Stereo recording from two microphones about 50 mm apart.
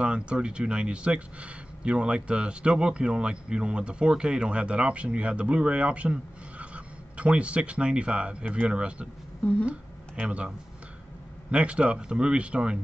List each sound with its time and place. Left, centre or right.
0.0 s speech: right
11.5 s speech: right